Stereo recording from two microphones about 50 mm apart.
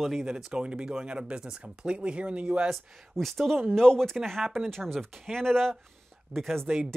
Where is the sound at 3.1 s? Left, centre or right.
Centre.